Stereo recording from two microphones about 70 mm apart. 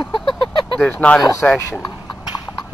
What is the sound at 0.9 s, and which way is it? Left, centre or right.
Speech, left.